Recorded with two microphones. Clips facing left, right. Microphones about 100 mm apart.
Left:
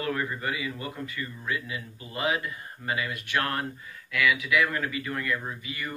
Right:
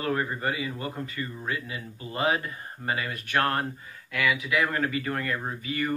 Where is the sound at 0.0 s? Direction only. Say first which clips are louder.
Right 2 dB; 30° right (ahead or behind).